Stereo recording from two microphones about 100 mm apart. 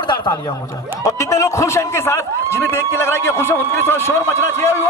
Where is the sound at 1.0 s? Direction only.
35° left (ahead or behind).